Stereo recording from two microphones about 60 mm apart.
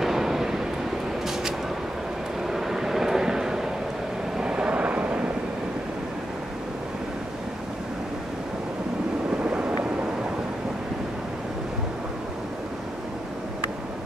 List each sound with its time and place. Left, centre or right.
0.0 s vehicle: centre
2.5 s vehicle: centre; by 5.2 s right
9.4 s vehicle: centre